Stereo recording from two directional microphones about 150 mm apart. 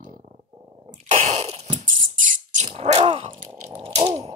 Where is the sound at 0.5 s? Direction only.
15° right (ahead or behind).